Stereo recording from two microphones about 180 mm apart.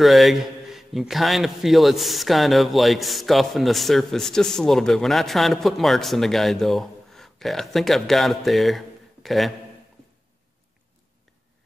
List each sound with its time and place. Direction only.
0.0 s a man's voice: centre (ahead or behind)